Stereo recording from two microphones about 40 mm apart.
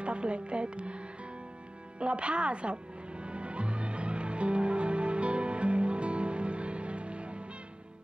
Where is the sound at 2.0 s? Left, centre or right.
Right.